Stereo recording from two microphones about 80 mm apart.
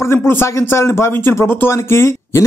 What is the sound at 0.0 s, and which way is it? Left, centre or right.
A man's voice, left.